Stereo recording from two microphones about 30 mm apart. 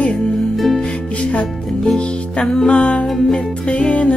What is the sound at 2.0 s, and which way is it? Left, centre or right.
Music, left.